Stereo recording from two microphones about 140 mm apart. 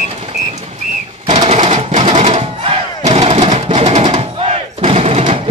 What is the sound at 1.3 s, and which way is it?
Crowd, 45° right (ahead or behind).